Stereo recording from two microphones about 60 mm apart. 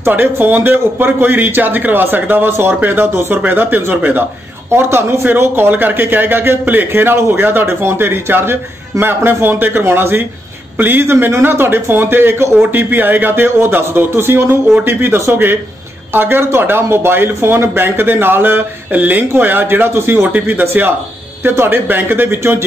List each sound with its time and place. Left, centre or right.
0.1 s a man's voice: right
4.6 s a man's voice: right
5.2 s a man's voice: right
20.3 s a man's voice: right